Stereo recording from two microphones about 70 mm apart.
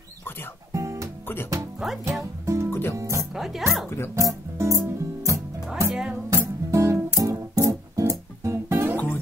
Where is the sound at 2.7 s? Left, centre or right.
Left.